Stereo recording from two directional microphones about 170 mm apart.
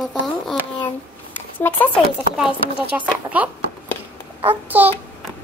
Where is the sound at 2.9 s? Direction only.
10° right (ahead or behind).